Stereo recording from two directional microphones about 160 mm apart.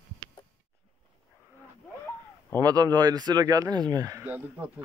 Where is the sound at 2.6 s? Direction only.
25° right (ahead or behind).